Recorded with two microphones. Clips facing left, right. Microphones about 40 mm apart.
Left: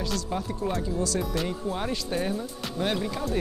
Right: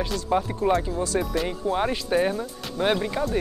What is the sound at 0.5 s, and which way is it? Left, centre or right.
Speech, right.